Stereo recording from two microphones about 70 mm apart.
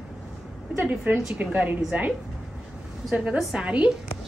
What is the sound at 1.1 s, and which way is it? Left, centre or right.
Speech, right.